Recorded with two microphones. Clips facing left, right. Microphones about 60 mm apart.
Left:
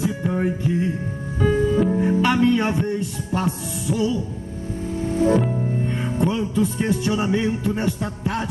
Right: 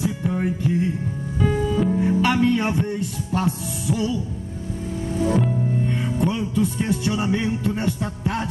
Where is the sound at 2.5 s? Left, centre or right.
Left.